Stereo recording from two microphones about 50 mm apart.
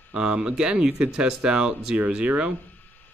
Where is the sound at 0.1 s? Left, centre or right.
Centre.